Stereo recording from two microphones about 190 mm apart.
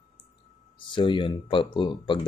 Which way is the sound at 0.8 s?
25° left (ahead or behind).